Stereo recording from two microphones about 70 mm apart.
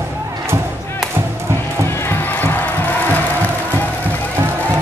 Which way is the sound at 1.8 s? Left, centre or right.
Left.